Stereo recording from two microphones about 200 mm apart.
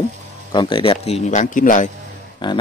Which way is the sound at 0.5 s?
25° left (ahead or behind).